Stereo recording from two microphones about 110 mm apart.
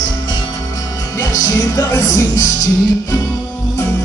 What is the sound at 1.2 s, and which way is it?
Music, 30° left (ahead or behind).